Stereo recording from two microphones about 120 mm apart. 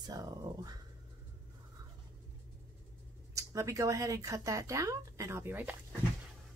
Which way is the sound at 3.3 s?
25° right (ahead or behind).